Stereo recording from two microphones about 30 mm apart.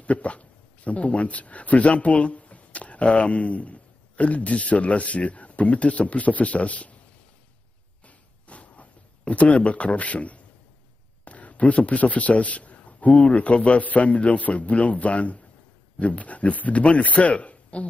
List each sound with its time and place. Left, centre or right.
0.0 s speech: left
8.0 s a sound: left
11.2 s a man's voice: left